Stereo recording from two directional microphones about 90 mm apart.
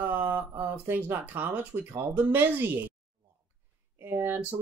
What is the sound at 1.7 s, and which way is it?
Speech, 45° right (ahead or behind).